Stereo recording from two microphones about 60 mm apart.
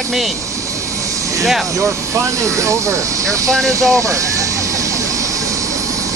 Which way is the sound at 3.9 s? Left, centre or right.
Right.